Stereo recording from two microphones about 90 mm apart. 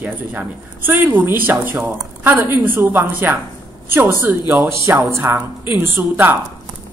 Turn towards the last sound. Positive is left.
turn(degrees=-20)  # may be behind; listen again after turning